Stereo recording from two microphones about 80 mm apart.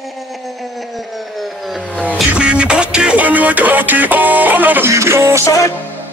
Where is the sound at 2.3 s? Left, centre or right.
Centre.